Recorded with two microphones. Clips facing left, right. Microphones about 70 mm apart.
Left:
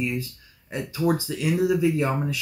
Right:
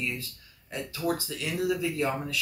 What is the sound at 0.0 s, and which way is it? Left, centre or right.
Speech, centre.